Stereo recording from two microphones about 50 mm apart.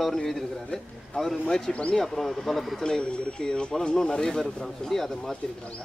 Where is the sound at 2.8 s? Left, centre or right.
Centre.